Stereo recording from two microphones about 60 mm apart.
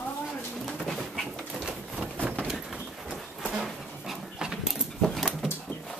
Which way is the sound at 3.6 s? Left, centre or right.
Centre.